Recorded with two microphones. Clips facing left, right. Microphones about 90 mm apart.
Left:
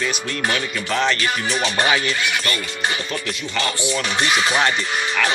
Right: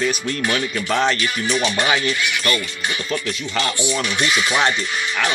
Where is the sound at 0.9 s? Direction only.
30° right (ahead or behind).